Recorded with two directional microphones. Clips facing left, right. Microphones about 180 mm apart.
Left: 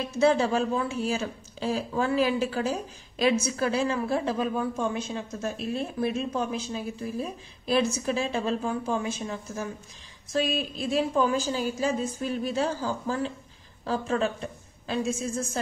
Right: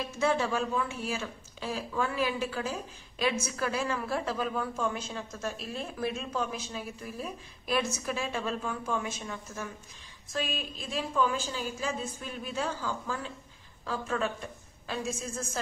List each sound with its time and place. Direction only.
0.2 s a woman's voice: 35° left (ahead or behind)